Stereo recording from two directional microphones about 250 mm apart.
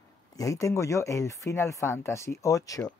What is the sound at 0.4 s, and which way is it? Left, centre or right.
Speech, centre.